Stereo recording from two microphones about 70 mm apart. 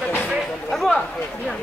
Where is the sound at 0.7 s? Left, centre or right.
Centre.